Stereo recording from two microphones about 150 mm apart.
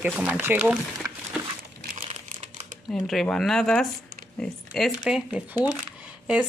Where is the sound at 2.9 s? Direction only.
5° left (ahead or behind).